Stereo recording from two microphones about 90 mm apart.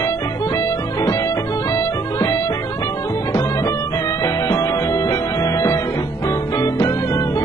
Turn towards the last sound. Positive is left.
turn(degrees=35)  # may be behind; listen again after turning